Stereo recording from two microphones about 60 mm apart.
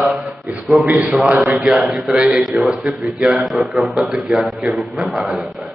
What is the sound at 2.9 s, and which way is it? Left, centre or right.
Speech, right.